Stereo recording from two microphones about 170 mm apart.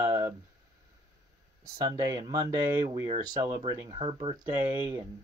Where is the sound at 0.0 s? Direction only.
20° right (ahead or behind).